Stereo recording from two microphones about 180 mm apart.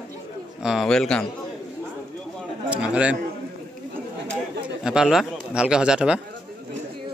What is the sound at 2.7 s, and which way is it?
Speech, 5° right (ahead or behind).